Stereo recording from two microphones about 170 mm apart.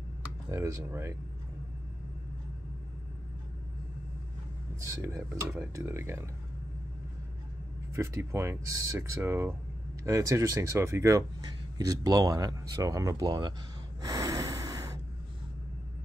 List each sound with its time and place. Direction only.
0.5 s speech: 15° right (ahead or behind)
4.8 s speech: 20° right (ahead or behind)
7.9 s speech: 15° right (ahead or behind)
14.0 s snort: 20° right (ahead or behind)